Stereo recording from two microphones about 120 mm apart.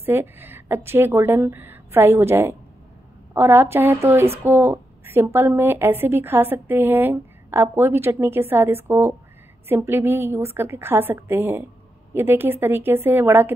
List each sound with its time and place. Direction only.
0.0 s a woman's voice: 20° right (ahead or behind)